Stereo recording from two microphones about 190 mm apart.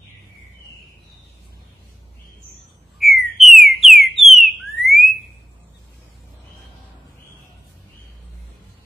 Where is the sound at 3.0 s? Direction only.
Centre (ahead or behind).